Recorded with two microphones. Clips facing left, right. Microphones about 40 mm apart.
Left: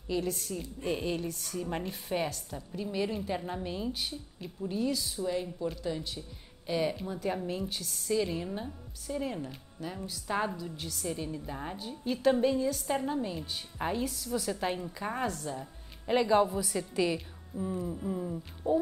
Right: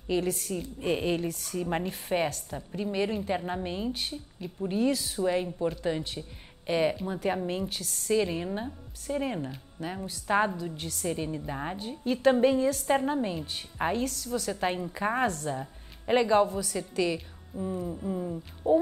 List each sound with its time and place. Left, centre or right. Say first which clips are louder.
0.1 s a woman's voice: right 4 dB; right
8.1 s a woman's voice: right 4 dB; right
14.2 s a woman's voice: right 2 dB; centre
14.5 s a woman's voice: right 3 dB; centre
15.2 s a woman's voice: right 5 dB; right
15.5 s music: right 4 dB; right
16.4 s a woman's voice: right 1 dB; centre